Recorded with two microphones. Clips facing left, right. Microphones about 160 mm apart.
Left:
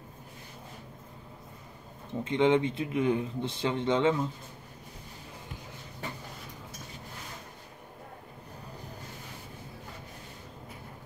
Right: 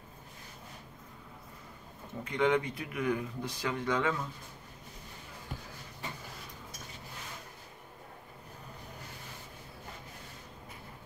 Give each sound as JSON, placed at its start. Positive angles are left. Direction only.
{"t": 2.2, "sound": "speech", "side_deg": 25}